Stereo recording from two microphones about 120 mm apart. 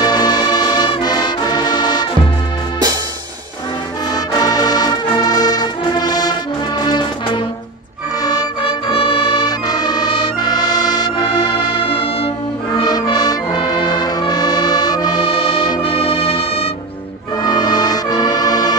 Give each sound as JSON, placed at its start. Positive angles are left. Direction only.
{"t": 0.0, "sound": "music", "side_deg": 35}
{"t": 4.1, "sound": "music", "side_deg": 35}
{"t": 8.6, "sound": "music", "side_deg": 50}
{"t": 12.8, "sound": "music", "side_deg": 35}